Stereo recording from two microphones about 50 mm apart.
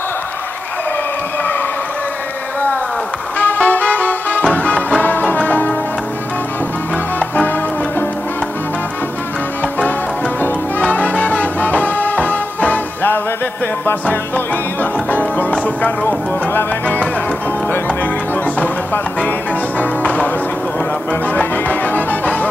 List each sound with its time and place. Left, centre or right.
3.3 s music: left
7.2 s music: left
10.8 s music: left
19.8 s music: left